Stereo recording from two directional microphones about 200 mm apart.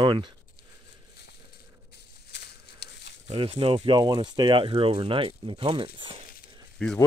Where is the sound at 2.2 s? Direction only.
55° left (ahead or behind).